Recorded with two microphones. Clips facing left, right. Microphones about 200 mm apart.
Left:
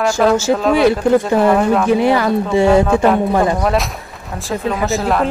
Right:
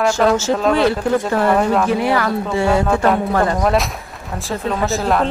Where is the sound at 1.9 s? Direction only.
20° left (ahead or behind).